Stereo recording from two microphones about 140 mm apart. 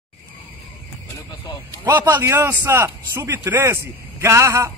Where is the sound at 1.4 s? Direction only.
25° left (ahead or behind).